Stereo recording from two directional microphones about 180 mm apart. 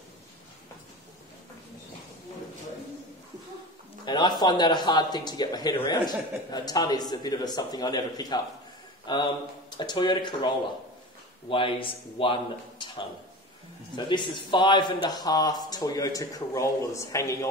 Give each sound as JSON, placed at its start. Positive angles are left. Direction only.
{"t": 4.0, "sound": "speech", "side_deg": 25}